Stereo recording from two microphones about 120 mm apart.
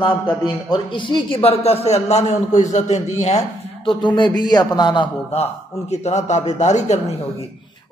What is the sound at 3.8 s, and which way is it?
A man's voice, 40° left (ahead or behind).